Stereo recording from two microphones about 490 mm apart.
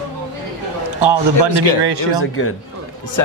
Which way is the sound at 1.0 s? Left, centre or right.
Right.